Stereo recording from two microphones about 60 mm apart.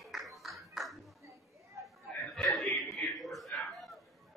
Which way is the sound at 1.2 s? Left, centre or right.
Right.